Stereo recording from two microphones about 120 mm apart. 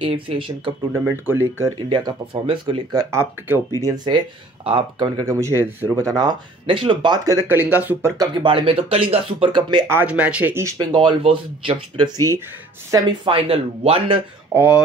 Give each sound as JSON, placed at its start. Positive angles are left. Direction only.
{"t": 0.0, "sound": "speech", "side_deg": -45}
{"t": 1.0, "sound": "speech", "side_deg": -20}
{"t": 1.9, "sound": "speech", "side_deg": -40}
{"t": 3.2, "sound": "speech", "side_deg": -20}
{"t": 3.8, "sound": "speech", "side_deg": -35}
{"t": 6.6, "sound": "speech", "side_deg": -45}
{"t": 7.2, "sound": "speech", "side_deg": -15}
{"t": 8.2, "sound": "speech", "side_deg": -40}
{"t": 9.8, "sound": "speech", "side_deg": -15}
{"t": 10.8, "sound": "speech", "side_deg": -40}
{"t": 13.2, "sound": "speech", "side_deg": -50}
{"t": 14.5, "sound": "speech", "side_deg": -20}